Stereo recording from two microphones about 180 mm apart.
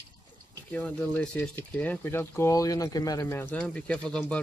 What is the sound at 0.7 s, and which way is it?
Speech, 10° left (ahead or behind).